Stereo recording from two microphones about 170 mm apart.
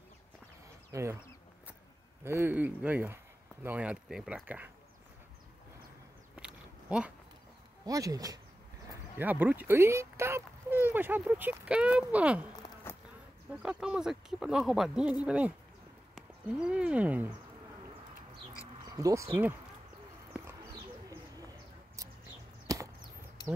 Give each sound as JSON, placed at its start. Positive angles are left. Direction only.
{"t": 0.9, "sound": "speech", "side_deg": -15}
{"t": 2.2, "sound": "speech", "side_deg": -15}
{"t": 6.3, "sound": "a sound", "side_deg": -5}
{"t": 7.8, "sound": "speech", "side_deg": -20}
{"t": 9.2, "sound": "speech", "side_deg": -10}
{"t": 12.9, "sound": "bee", "side_deg": 15}
{"t": 13.5, "sound": "speech", "side_deg": -5}
{"t": 18.9, "sound": "speech", "side_deg": -20}
{"t": 22.7, "sound": "chop", "side_deg": -20}